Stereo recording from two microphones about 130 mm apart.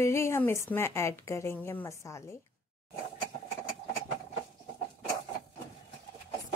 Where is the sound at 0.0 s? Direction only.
20° left (ahead or behind).